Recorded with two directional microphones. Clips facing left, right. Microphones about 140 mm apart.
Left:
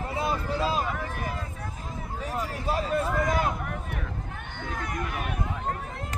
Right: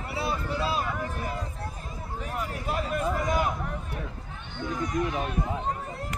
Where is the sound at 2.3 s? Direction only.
35° left (ahead or behind).